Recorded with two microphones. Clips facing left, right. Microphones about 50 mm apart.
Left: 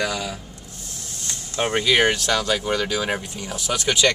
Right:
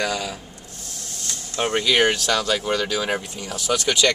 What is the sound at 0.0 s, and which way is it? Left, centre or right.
Speech, centre.